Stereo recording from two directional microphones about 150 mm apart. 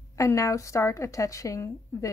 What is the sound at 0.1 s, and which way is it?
Speech, 20° left (ahead or behind).